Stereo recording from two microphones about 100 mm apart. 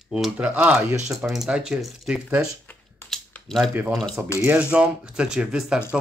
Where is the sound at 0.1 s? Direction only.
10° right (ahead or behind).